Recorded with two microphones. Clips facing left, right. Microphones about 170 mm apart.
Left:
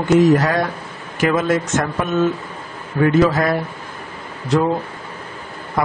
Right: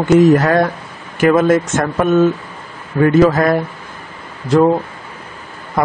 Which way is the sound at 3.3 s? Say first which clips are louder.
Right 4 dB; 50° right (ahead or behind).